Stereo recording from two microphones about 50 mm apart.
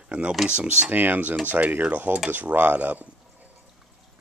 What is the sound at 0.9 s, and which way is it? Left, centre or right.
Speech, right.